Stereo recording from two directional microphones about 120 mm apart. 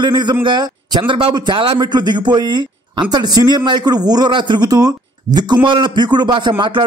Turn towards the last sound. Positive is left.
turn(degrees=-40)  # may be behind; listen again after turning